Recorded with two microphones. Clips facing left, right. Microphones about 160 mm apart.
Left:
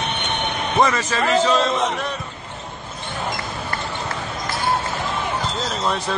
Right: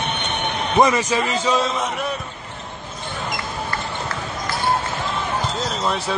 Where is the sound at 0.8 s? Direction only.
15° right (ahead or behind).